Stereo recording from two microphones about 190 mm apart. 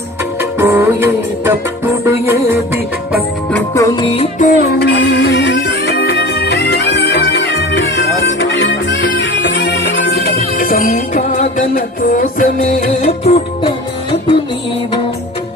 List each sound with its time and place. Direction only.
0.6 s music: 10° right (ahead or behind)
3.5 s music: 15° left (ahead or behind)
4.5 s music: 60° left (ahead or behind); by 13.4 s 35° left (ahead or behind)